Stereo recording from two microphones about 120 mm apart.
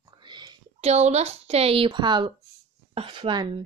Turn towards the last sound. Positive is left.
turn(degrees=-40)  # may be behind; listen again after turning